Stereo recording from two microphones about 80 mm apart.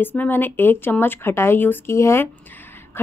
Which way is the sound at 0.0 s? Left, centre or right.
Left.